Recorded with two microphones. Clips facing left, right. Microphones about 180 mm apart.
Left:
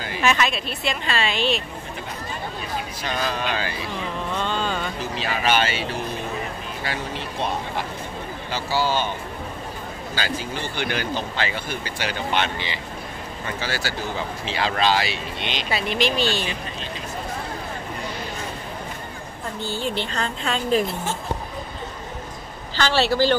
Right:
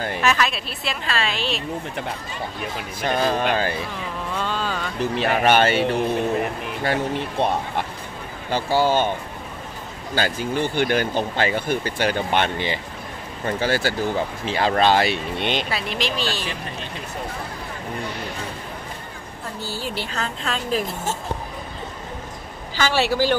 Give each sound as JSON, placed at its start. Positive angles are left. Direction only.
{"t": 0.2, "sound": "a woman's voice", "side_deg": 0}
{"t": 2.6, "sound": "speech", "side_deg": -55}
{"t": 4.4, "sound": "a sound", "side_deg": -5}
{"t": 5.1, "sound": "speech", "side_deg": -55}
{"t": 10.1, "sound": "speech", "side_deg": -50}
{"t": 15.7, "sound": "a woman's voice", "side_deg": 0}
{"t": 19.6, "sound": "a woman's voice", "side_deg": -5}
{"t": 22.8, "sound": "a man's voice", "side_deg": -10}